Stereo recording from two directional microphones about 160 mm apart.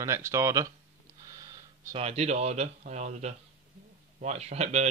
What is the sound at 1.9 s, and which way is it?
Speech, 40° right (ahead or behind).